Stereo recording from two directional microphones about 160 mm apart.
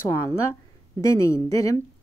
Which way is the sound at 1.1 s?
20° left (ahead or behind).